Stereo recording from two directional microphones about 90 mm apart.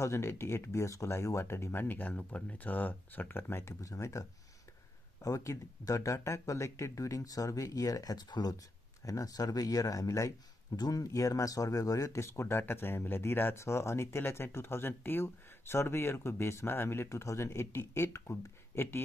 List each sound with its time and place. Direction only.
0.0 s speech: 35° left (ahead or behind)
3.8 s speech: 35° left (ahead or behind)